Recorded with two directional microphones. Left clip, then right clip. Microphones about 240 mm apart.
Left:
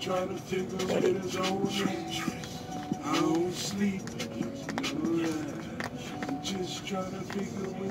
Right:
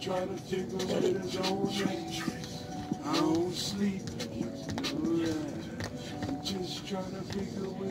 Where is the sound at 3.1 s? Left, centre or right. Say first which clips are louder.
Left 1 dB; left.